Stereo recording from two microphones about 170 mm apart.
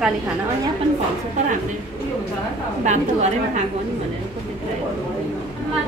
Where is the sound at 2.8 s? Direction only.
45° right (ahead or behind).